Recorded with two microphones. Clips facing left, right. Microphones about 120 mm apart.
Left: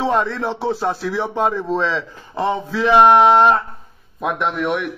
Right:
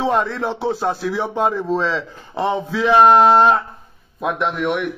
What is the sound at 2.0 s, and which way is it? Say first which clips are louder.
Speech: even; 20° right (ahead or behind).